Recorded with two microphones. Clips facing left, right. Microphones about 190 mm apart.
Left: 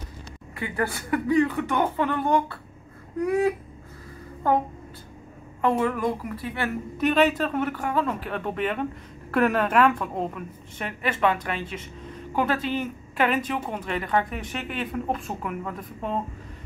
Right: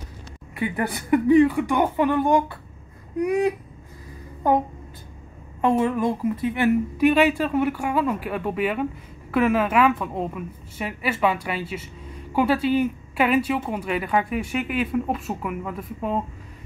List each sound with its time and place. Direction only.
0.6 s a woman's voice: 15° right (ahead or behind)